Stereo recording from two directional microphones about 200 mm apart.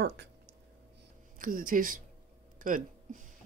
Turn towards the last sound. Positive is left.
turn(degrees=-40)  # may be behind; listen again after turning